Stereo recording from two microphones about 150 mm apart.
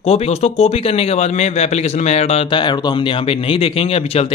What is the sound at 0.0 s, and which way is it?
A man's voice, 45° left (ahead or behind).